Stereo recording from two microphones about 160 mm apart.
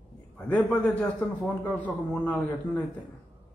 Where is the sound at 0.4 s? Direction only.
10° left (ahead or behind).